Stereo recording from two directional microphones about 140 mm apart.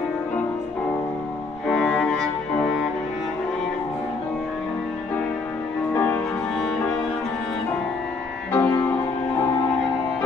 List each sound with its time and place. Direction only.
1.7 s music: centre (ahead or behind)
5.9 s music: 10° left (ahead or behind)
8.5 s music: 15° left (ahead or behind)